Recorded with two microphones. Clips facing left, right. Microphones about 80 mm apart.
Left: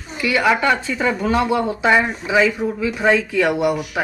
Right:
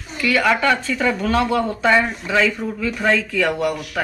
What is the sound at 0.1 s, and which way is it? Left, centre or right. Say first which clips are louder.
A woman's voice: left 1 dB; centre.